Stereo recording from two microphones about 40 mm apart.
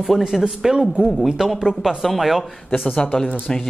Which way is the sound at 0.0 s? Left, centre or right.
Centre.